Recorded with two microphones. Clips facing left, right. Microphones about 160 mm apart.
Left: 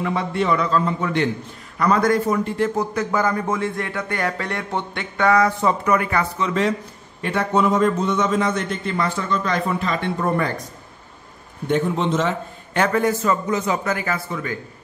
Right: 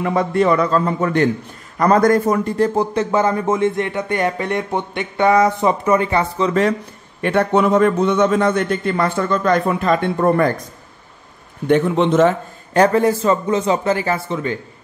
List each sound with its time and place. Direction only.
0.0 s a man's voice: 45° right (ahead or behind); by 6.5 s 30° right (ahead or behind)
7.2 s a man's voice: 65° right (ahead or behind)
11.6 s a man's voice: 65° right (ahead or behind); by 14.6 s 25° right (ahead or behind)